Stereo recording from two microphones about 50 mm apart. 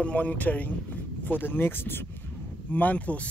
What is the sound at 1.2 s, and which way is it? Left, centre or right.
Speech, left.